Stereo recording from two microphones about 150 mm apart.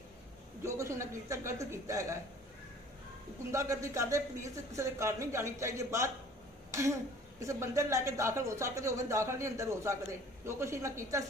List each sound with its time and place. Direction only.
0.7 s a woman's voice: 20° right (ahead or behind)
3.5 s a woman's voice: 20° right (ahead or behind)